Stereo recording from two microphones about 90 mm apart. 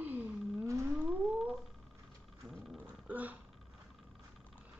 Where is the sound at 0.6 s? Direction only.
35° right (ahead or behind).